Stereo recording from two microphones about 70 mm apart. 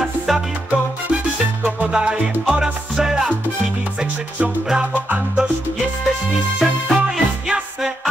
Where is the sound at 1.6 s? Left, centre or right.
Centre.